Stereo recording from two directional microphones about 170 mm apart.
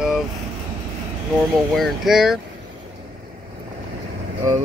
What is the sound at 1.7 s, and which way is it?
Speech, centre (ahead or behind).